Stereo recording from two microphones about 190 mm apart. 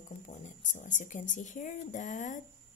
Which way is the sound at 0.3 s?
40° left (ahead or behind).